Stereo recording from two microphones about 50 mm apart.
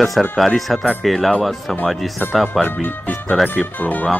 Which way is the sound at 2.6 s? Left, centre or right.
Left.